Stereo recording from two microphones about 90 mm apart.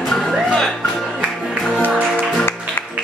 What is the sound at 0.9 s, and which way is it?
Music, 5° right (ahead or behind).